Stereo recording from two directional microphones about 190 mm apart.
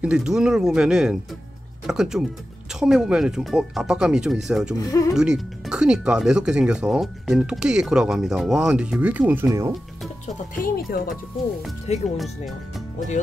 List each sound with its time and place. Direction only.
0.0 s speech: 5° right (ahead or behind)
4.7 s speech: 15° left (ahead or behind)
5.1 s speech: 5° right (ahead or behind)
10.2 s speech: 50° left (ahead or behind)
12.2 s speech: centre (ahead or behind)